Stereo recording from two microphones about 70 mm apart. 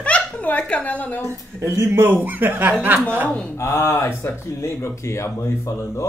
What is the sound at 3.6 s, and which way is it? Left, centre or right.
Speech, left.